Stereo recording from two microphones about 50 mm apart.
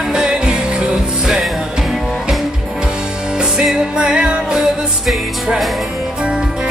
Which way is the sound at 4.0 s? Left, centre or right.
Centre.